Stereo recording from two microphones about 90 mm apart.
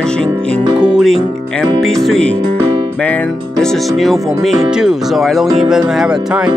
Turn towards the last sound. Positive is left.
turn(degrees=-10)  # may be behind; listen again after turning